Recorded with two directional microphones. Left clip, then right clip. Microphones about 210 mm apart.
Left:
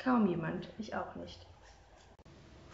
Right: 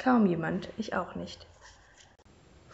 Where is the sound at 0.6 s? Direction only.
50° right (ahead or behind).